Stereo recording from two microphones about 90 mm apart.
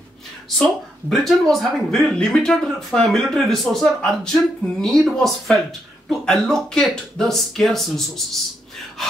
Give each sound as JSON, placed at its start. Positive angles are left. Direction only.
{"t": 0.6, "sound": "speech", "side_deg": 5}